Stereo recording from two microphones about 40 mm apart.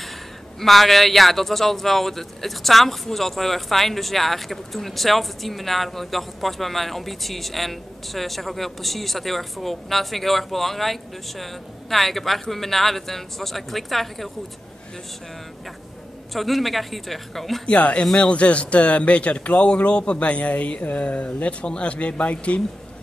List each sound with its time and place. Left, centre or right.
0.6 s speech: centre
16.3 s speech: centre
17.6 s a man's voice: left